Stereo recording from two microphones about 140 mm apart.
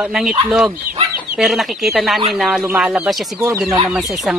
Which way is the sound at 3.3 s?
20° right (ahead or behind).